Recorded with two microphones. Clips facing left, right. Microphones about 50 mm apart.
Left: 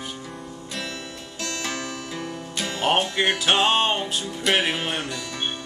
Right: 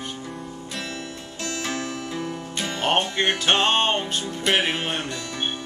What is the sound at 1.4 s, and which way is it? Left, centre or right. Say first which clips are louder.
Music: right 1 dB; centre.